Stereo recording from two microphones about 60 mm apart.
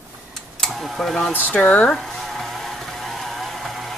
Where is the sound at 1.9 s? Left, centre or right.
Centre.